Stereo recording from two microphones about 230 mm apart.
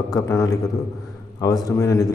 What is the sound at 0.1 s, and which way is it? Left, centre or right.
A man's voice, centre.